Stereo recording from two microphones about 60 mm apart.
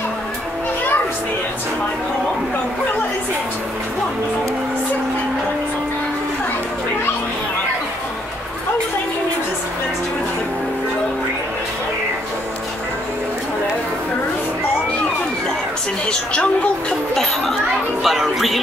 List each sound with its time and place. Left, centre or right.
16.1 s a woman's voice: centre
17.1 s speech: centre